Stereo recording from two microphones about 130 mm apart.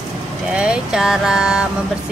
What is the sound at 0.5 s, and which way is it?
Speech, 10° right (ahead or behind).